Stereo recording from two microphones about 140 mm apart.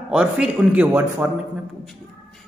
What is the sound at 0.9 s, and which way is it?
Speech, 20° right (ahead or behind).